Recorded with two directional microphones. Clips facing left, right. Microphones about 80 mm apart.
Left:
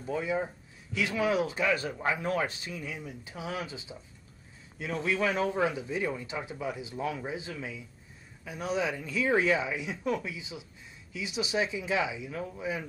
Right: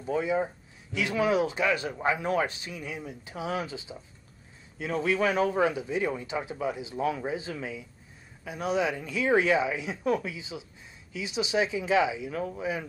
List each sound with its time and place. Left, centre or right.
0.1 s speech: right
12.3 s speech: right
12.5 s speech: right